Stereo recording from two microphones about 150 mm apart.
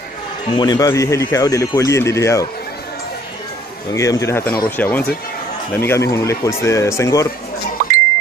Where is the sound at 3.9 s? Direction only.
20° left (ahead or behind).